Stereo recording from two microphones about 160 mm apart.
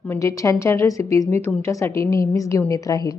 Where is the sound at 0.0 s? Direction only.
15° left (ahead or behind).